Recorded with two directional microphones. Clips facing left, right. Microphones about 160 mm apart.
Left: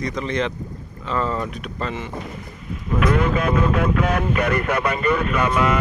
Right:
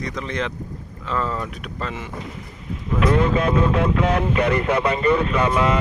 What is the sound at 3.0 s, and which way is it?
Speech, 30° right (ahead or behind).